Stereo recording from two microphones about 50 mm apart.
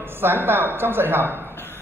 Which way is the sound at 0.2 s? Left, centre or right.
Right.